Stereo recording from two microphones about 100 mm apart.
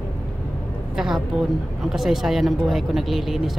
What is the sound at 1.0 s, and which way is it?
Speech, 5° right (ahead or behind).